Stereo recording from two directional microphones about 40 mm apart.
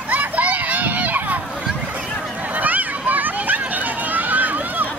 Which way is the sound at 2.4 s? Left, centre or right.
Right.